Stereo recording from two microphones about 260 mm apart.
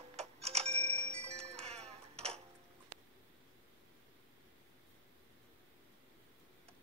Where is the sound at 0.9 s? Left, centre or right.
Right.